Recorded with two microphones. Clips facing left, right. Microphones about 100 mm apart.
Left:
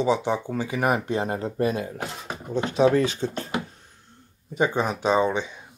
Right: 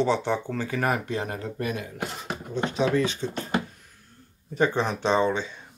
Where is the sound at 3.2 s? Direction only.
35° left (ahead or behind).